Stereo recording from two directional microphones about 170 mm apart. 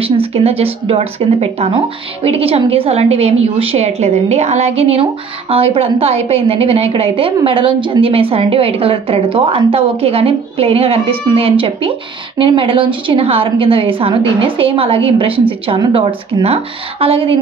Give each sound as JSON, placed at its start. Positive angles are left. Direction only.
{"t": 0.0, "sound": "a woman's voice", "side_deg": -35}